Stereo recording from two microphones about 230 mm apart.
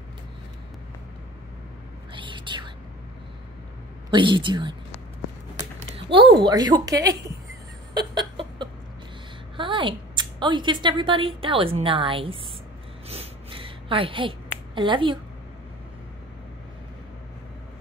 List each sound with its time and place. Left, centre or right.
2.1 s whispering: right
4.1 s speech: right
7.9 s a sound: centre
9.6 s a woman's voice: right
13.1 s a sound: right
14.8 s speech: right